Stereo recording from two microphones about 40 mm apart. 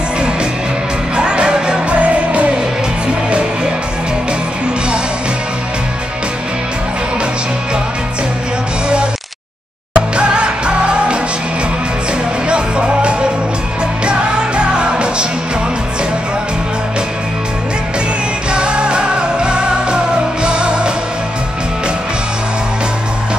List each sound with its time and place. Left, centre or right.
1.1 s music: right
2.0 s music: right
9.9 s music: right
12.4 s music: right
18.5 s music: right